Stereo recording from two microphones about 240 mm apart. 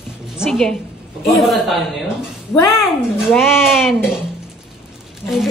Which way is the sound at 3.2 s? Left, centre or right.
Centre.